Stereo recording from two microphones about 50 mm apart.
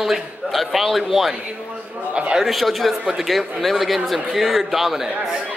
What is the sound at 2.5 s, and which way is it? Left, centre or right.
A man's voice, centre.